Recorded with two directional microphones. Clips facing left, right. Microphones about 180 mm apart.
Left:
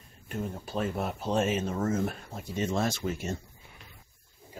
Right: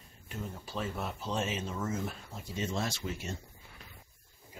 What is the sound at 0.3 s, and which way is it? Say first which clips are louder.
Speech: left 6 dB; 50° left (ahead or behind).